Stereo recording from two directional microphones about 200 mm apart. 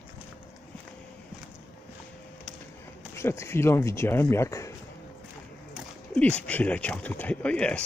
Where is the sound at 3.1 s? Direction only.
15° left (ahead or behind).